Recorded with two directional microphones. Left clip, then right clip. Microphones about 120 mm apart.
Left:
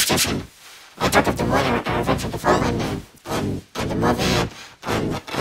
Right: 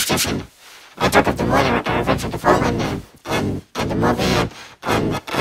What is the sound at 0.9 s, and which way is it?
Music, 5° right (ahead or behind).